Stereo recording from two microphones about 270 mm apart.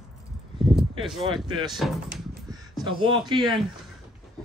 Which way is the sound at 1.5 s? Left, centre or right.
Centre.